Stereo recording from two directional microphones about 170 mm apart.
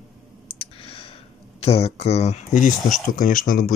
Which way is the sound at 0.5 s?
35° left (ahead or behind).